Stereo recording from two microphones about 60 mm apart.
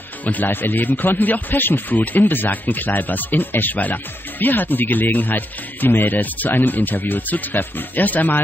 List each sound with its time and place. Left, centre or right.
0.2 s speech: left